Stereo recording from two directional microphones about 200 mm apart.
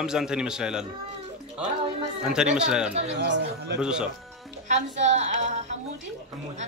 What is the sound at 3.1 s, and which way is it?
Speech, 60° right (ahead or behind).